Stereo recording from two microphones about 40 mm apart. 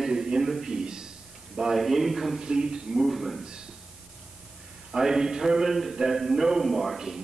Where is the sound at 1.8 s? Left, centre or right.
Centre.